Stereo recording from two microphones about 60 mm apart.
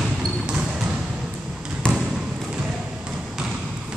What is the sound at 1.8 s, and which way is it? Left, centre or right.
Trickle, centre.